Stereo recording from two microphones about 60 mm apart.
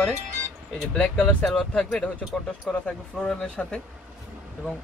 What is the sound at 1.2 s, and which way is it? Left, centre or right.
Speech, centre.